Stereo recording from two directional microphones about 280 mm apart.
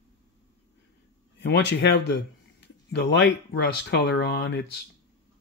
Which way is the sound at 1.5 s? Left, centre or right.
Left.